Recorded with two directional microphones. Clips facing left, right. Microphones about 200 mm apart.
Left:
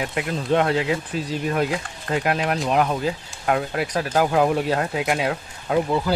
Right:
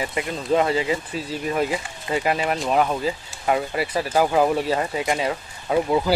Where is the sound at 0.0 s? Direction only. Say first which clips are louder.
Left 1 dB; centre (ahead or behind).